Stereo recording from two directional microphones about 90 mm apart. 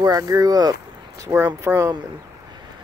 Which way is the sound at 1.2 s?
30° right (ahead or behind).